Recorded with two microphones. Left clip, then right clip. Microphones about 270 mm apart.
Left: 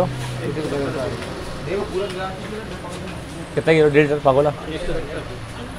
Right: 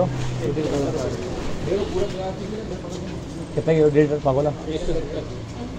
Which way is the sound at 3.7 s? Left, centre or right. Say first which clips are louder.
Left 3 dB; left.